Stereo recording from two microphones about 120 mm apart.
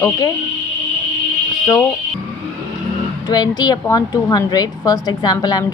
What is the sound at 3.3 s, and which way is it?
A woman's voice, 35° left (ahead or behind).